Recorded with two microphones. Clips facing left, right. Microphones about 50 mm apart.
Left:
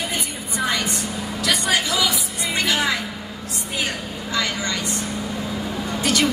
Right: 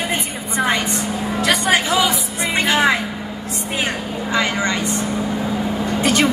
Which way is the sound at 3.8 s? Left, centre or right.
Right.